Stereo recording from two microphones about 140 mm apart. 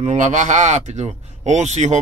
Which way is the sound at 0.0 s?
60° right (ahead or behind).